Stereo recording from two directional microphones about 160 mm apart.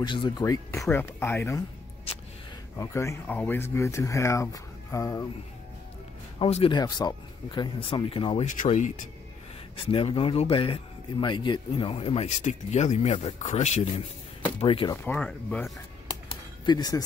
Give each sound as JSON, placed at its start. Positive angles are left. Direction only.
{"t": 0.0, "sound": "speech", "side_deg": 30}
{"t": 2.8, "sound": "speech", "side_deg": 20}
{"t": 6.4, "sound": "speech", "side_deg": 35}
{"t": 8.5, "sound": "speech", "side_deg": 50}
{"t": 9.8, "sound": "speech", "side_deg": 35}
{"t": 14.6, "sound": "speech", "side_deg": 35}
{"t": 15.0, "sound": "speech", "side_deg": 5}
{"t": 16.1, "sound": "a sound", "side_deg": 30}